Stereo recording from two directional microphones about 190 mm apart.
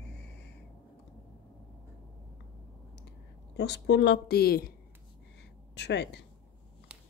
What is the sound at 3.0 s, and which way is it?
Speech, 65° left (ahead or behind).